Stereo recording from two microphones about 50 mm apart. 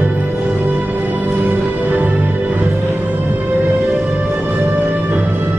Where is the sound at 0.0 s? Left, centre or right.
Right.